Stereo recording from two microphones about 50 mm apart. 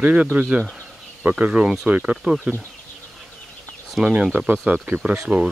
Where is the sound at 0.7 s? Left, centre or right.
Right.